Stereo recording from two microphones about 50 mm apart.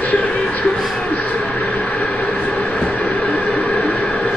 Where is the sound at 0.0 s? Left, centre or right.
Left.